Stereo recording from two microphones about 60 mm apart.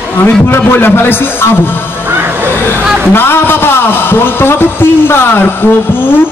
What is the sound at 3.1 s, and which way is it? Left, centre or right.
A man's voice, left.